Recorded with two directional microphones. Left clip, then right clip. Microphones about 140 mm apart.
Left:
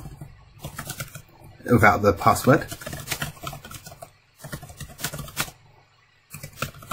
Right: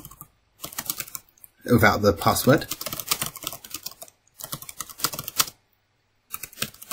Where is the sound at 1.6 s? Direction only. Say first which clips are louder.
Left 1 dB; 20° right (ahead or behind).